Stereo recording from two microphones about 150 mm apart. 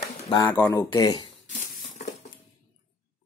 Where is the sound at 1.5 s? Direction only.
55° left (ahead or behind).